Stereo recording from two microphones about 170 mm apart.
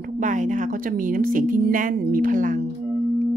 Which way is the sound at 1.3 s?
55° right (ahead or behind).